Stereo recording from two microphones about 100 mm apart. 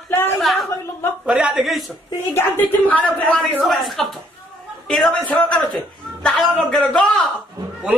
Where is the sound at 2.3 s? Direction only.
20° left (ahead or behind).